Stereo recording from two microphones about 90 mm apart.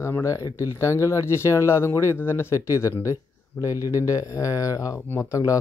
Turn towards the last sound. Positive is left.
turn(degrees=25)  # may be behind; listen again after turning